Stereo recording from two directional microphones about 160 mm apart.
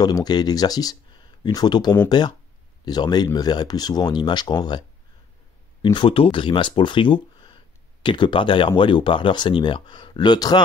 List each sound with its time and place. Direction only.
0.0 s speech: 25° left (ahead or behind)